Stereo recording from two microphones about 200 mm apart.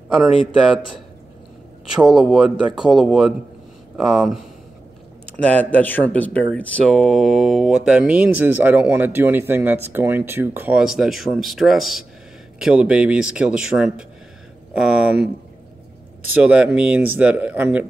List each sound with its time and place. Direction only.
0.3 s speech: 25° left (ahead or behind)
2.0 s speech: centre (ahead or behind)
16.3 s speech: 5° right (ahead or behind)